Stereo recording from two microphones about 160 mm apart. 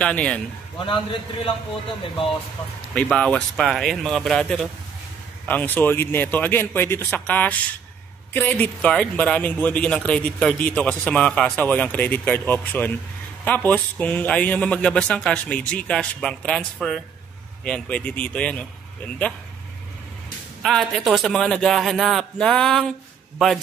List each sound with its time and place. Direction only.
0.0 s a man's voice: 5° left (ahead or behind)
0.8 s a man's voice: 35° left (ahead or behind)
2.9 s a man's voice: 10° left (ahead or behind)
20.6 s a man's voice: centre (ahead or behind)